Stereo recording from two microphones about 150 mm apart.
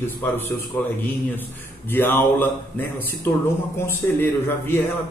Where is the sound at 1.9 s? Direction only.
15° left (ahead or behind).